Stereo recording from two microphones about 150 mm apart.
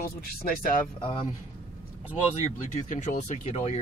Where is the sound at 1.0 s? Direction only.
35° left (ahead or behind).